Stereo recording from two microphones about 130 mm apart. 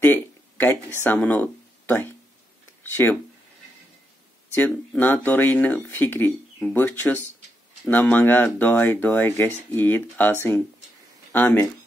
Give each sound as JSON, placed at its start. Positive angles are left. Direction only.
{"t": 0.0, "sound": "a sound", "side_deg": 15}
{"t": 1.0, "sound": "speech", "side_deg": 15}
{"t": 4.6, "sound": "speech", "side_deg": 15}
{"t": 11.3, "sound": "speech", "side_deg": 15}